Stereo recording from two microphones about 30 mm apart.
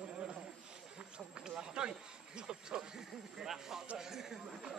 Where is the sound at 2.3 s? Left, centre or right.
Right.